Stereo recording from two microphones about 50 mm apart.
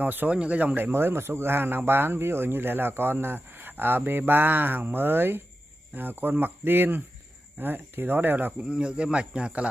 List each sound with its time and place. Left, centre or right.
0.0 s speech: right
0.3 s speech: right
0.9 s speech: right
8.5 s speech: right